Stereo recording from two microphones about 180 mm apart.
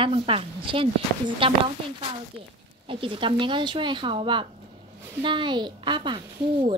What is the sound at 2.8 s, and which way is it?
A woman's voice, 30° right (ahead or behind).